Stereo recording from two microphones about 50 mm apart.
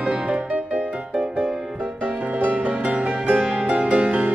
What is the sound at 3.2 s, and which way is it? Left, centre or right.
Music, right.